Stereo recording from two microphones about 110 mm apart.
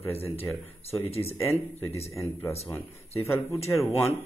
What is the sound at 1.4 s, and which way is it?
Speech, 20° left (ahead or behind).